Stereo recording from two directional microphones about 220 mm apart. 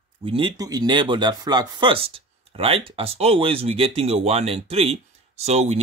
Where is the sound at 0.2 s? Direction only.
25° right (ahead or behind).